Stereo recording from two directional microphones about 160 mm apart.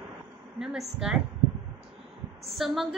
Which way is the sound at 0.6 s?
5° right (ahead or behind).